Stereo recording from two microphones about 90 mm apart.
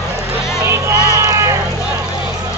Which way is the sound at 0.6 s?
30° right (ahead or behind).